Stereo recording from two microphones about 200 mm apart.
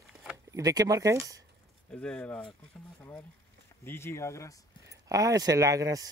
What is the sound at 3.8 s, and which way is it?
Speech, 10° left (ahead or behind).